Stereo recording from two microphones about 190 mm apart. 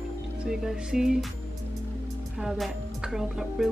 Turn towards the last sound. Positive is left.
turn(degrees=0)  # may be behind; listen again after turning